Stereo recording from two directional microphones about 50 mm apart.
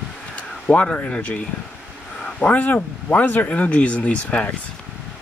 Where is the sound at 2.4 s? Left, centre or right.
Left.